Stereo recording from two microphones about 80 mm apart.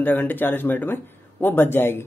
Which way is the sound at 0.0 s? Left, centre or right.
Left.